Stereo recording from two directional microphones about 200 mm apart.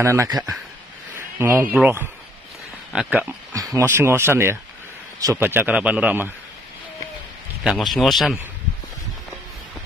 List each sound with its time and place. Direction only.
0.0 s speech: 15° right (ahead or behind)
1.4 s speech: 10° right (ahead or behind)
7.6 s speech: centre (ahead or behind)